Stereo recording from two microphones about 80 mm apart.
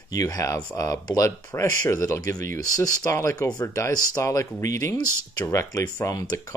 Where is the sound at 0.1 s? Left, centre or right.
Left.